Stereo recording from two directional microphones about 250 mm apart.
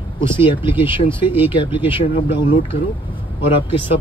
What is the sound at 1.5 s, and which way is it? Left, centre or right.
Speech, centre.